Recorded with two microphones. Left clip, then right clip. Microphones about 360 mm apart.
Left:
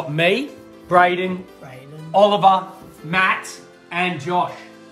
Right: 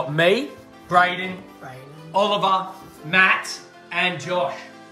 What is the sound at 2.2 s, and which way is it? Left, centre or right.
A man's voice, left.